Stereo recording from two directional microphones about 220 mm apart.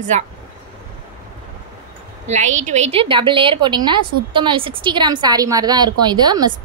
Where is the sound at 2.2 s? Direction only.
30° right (ahead or behind).